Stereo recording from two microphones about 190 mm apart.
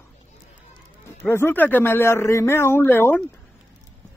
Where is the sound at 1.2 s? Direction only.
10° left (ahead or behind).